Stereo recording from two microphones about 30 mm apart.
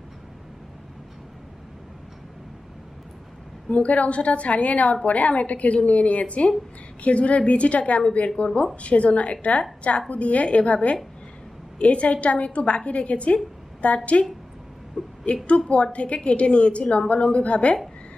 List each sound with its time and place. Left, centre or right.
3.6 s a woman's voice: left
15.0 s a woman's voice: centre
15.8 s a woman's voice: left